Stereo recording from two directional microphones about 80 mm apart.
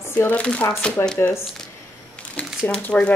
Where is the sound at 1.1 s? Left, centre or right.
Left.